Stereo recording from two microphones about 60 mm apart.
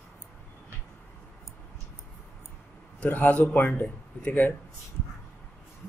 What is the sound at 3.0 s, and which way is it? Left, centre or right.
A man's voice, left.